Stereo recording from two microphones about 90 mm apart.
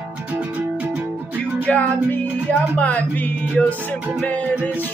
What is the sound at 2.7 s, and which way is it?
Speech, 15° left (ahead or behind).